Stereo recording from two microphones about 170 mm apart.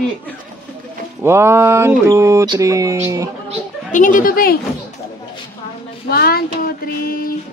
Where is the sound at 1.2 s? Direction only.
15° right (ahead or behind).